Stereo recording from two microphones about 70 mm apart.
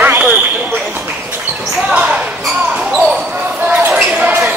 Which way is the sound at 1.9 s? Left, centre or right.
Centre.